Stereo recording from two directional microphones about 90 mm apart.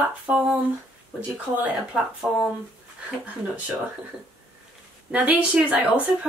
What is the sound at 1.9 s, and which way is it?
Speech, 10° right (ahead or behind).